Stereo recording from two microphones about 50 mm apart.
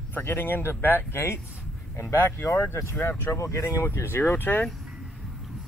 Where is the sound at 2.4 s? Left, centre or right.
Left.